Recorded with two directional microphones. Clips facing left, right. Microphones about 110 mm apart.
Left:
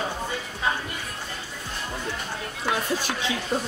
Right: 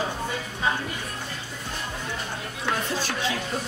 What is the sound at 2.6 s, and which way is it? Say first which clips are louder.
Speech: left 1 dB; 15° left (ahead or behind).